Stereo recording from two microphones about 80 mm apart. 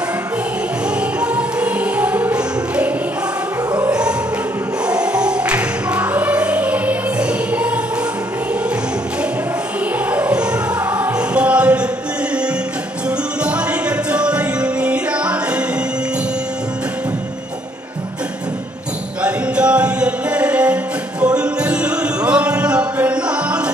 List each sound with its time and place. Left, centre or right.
1.2 s music: centre
4.8 s music: centre
10.1 s music: centre
13.4 s music: centre
19.2 s music: centre